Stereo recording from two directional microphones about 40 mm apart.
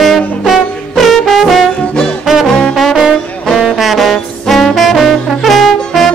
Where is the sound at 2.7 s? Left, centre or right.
Centre.